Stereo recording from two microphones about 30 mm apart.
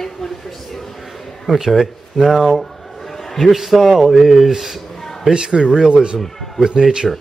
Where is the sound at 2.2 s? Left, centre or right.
Centre.